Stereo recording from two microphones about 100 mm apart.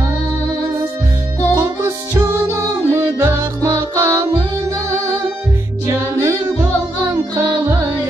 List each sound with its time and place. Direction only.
1.5 s music: 30° right (ahead or behind)
5.9 s music: 30° right (ahead or behind)